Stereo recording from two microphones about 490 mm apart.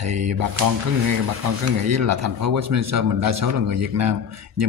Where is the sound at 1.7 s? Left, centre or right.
Right.